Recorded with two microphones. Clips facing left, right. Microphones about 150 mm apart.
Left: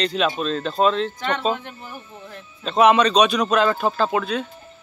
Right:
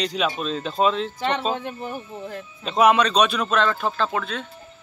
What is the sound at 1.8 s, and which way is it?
Speech, 35° right (ahead or behind).